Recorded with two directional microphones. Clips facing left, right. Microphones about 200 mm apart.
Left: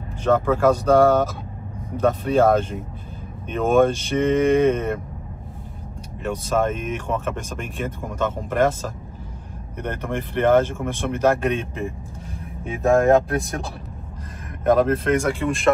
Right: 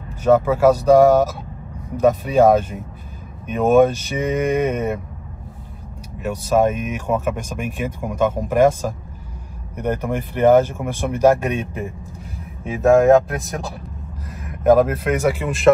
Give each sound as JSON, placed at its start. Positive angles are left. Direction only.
{"t": 0.2, "sound": "speech", "side_deg": -10}
{"t": 6.2, "sound": "speech", "side_deg": -10}
{"t": 14.6, "sound": "speech", "side_deg": -10}